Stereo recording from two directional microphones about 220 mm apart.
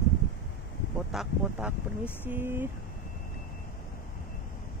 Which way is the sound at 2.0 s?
10° left (ahead or behind).